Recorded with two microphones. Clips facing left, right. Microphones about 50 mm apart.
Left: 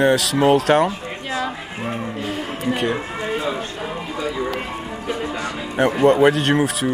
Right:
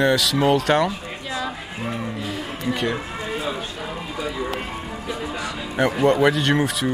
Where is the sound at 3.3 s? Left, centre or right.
Left.